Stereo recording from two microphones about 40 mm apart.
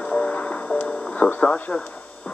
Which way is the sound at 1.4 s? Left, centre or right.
Left.